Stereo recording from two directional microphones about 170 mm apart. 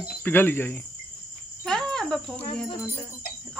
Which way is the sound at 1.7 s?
Centre (ahead or behind).